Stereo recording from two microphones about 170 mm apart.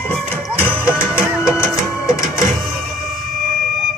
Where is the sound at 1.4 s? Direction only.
15° left (ahead or behind).